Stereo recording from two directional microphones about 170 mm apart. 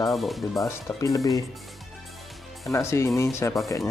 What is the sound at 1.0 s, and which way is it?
Speech, 20° left (ahead or behind).